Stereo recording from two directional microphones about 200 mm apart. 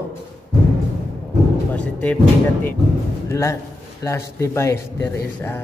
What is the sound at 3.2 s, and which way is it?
A man's voice, 15° left (ahead or behind).